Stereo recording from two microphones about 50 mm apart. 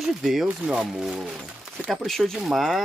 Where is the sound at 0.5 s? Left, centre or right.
Centre.